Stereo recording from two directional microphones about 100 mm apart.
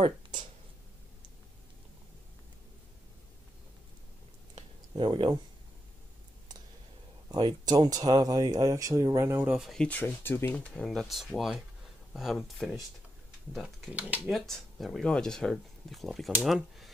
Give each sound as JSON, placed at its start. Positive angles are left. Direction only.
{"t": 4.6, "sound": "a sound", "side_deg": -55}
{"t": 7.2, "sound": "speech", "side_deg": -45}
{"t": 9.6, "sound": "speech", "side_deg": 0}
{"t": 9.8, "sound": "speech", "side_deg": 20}
{"t": 10.6, "sound": "speech", "side_deg": 10}
{"t": 13.9, "sound": "speech", "side_deg": -15}
{"t": 14.3, "sound": "speech", "side_deg": 0}